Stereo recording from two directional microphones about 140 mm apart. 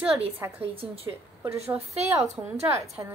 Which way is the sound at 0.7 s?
40° right (ahead or behind).